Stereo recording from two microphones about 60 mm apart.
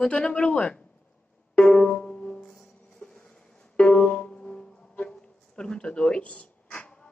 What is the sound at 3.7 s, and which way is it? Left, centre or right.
Music, centre.